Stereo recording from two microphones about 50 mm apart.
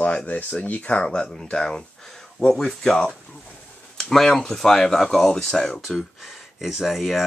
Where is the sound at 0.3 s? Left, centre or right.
Left; by 5.9 s centre.